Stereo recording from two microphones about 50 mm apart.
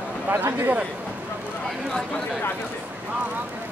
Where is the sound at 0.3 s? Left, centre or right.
Right.